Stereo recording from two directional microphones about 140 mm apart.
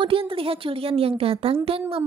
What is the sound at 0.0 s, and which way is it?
A woman's voice, 40° right (ahead or behind).